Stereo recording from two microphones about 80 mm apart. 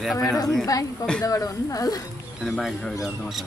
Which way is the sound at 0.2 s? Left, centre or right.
Left.